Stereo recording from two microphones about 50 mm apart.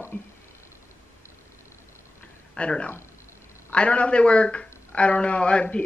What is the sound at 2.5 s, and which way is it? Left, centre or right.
Speech, left.